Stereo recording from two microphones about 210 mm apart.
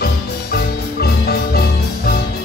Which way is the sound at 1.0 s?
45° left (ahead or behind).